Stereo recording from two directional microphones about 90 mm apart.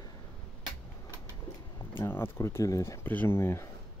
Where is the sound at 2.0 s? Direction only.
25° left (ahead or behind).